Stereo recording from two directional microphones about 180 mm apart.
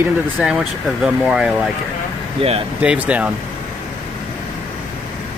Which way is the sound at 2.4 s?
30° right (ahead or behind).